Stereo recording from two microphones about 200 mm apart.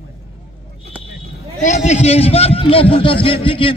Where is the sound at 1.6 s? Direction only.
35° left (ahead or behind).